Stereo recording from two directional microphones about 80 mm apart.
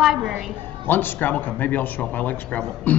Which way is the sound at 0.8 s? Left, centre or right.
Left.